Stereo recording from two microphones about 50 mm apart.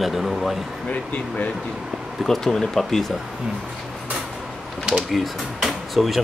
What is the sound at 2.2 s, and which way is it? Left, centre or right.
Speech, centre.